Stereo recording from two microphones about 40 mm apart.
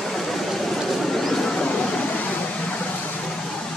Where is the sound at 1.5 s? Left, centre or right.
Left.